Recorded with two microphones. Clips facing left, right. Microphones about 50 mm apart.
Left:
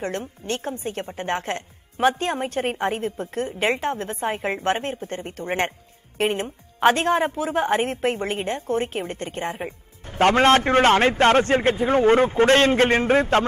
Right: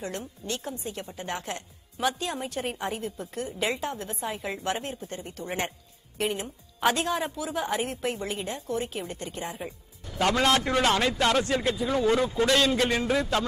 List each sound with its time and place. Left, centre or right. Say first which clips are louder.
0.0 s a woman's voice: left 6 dB; left